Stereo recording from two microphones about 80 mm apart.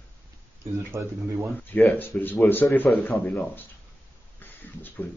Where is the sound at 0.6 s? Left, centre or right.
Right.